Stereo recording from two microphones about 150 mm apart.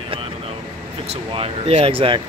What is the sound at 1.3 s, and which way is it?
Speech, 40° right (ahead or behind).